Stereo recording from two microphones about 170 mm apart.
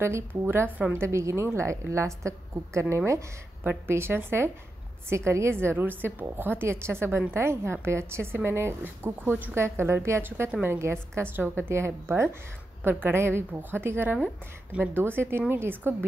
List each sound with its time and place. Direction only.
0.0 s a woman's voice: 15° right (ahead or behind)